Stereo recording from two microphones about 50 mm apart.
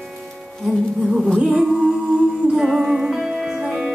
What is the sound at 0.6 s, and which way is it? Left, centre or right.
Music, centre.